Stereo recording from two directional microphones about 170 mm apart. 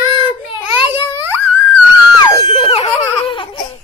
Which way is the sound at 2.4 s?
40° left (ahead or behind).